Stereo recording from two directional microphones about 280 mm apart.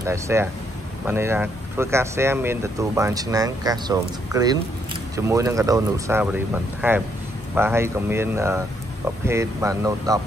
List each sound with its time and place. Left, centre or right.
0.0 s speech: centre